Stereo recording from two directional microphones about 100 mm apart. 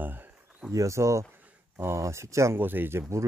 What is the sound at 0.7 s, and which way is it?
Speech, 30° right (ahead or behind).